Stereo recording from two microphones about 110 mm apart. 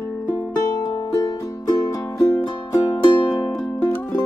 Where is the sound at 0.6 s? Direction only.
35° left (ahead or behind).